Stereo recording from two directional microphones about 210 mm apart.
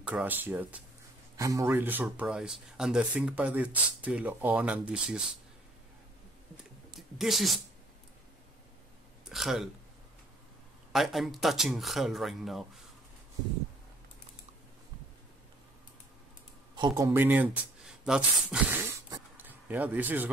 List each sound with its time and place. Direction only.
0.0 s speech: 5° right (ahead or behind)
6.5 s clicking: centre (ahead or behind)
9.3 s a sound: centre (ahead or behind)
10.9 s speech: centre (ahead or behind)
16.7 s speech: 20° right (ahead or behind)